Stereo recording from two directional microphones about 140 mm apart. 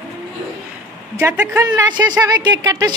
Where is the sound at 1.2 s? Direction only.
20° right (ahead or behind).